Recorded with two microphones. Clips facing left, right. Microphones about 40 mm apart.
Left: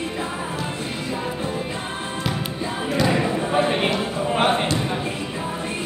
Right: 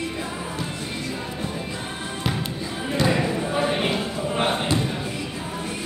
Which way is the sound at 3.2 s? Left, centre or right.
Left.